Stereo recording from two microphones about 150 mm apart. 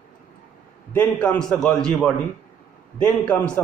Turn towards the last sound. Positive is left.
turn(degrees=10)  # may be behind; listen again after turning